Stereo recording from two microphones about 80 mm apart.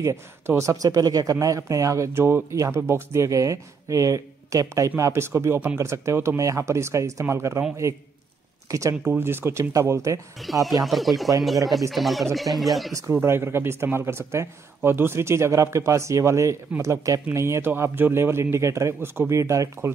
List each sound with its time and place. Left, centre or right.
0.0 s speech: right
0.8 s speech: right
8.6 s speech: right
9.2 s speech: right
10.4 s speech: centre
12.9 s speech: right